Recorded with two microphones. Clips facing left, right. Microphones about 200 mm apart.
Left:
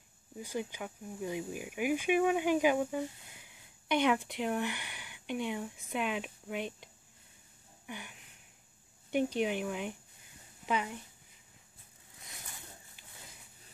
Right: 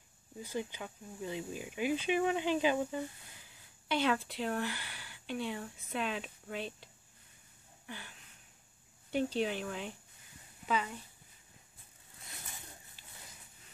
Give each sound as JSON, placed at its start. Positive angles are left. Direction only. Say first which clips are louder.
{"t": 0.4, "sound": "speech", "louder": "left 1 dB", "side_deg": 15}
{"t": 7.8, "sound": "a sound", "louder": "left 3 dB", "side_deg": 15}
{"t": 9.1, "sound": "speech", "louder": "left 2 dB", "side_deg": 15}